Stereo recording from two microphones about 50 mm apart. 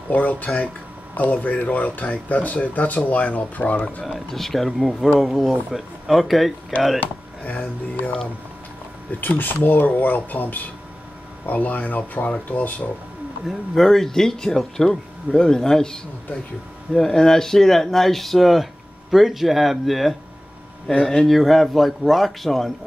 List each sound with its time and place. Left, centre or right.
0.1 s speech: left
4.0 s speech: centre
7.0 s speech: left
9.4 s speech: left
13.5 s speech: centre
20.9 s speech: centre
21.3 s speech: centre